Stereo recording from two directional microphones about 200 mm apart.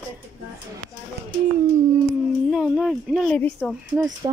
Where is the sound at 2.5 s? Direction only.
Centre (ahead or behind).